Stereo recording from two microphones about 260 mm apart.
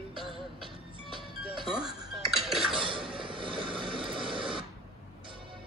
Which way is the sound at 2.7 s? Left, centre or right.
Centre.